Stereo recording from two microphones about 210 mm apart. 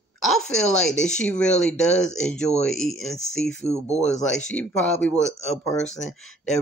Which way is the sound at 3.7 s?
15° right (ahead or behind).